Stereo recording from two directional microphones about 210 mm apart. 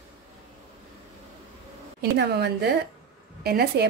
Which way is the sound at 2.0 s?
50° right (ahead or behind).